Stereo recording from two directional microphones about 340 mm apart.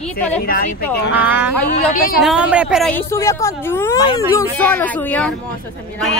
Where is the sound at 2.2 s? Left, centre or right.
Centre.